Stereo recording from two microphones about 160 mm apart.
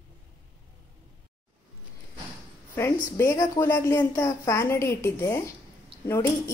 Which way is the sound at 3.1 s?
20° left (ahead or behind).